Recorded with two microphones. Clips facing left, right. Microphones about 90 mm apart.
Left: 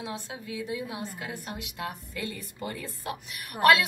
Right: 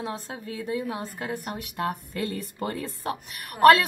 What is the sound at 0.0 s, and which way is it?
A woman's voice, 40° right (ahead or behind).